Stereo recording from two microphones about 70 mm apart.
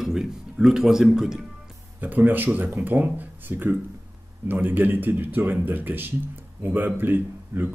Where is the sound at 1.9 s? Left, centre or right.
Right.